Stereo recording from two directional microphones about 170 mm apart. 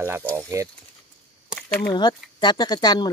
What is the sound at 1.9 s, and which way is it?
Speech, 25° left (ahead or behind).